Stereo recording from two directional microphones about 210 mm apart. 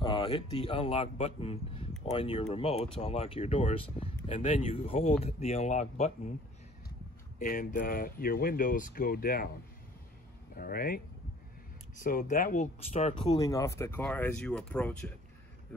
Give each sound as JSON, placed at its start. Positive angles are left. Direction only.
{"t": 0.0, "sound": "a man's voice", "side_deg": 20}
{"t": 7.3, "sound": "speech", "side_deg": 40}
{"t": 10.5, "sound": "speech", "side_deg": 45}
{"t": 12.0, "sound": "speech", "side_deg": 40}
{"t": 12.8, "sound": "speech", "side_deg": 30}
{"t": 13.4, "sound": "speech", "side_deg": 15}